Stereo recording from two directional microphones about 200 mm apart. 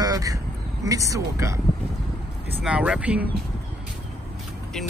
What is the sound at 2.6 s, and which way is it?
Speech, 5° right (ahead or behind).